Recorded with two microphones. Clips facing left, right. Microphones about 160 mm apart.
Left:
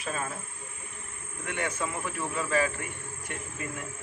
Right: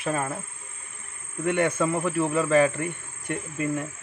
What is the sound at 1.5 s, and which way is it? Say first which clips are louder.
A man's voice: right 10 dB; 55° right (ahead or behind).